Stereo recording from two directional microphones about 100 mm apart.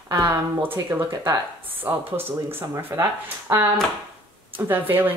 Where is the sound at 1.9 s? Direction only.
20° right (ahead or behind).